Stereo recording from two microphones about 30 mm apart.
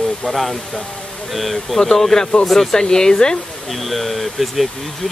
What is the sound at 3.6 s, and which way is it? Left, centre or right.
Speech, centre.